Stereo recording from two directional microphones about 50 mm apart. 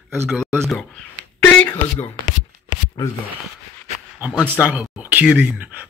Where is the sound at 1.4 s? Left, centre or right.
Left.